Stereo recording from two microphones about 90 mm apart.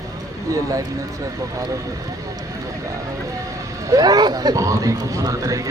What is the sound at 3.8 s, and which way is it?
Speech, 45° right (ahead or behind).